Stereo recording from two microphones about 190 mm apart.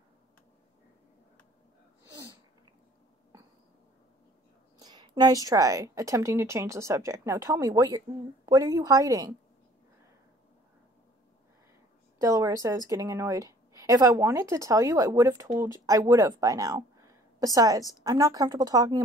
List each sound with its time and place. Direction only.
4.7 s speech: 20° right (ahead or behind)
12.2 s speech: 15° right (ahead or behind)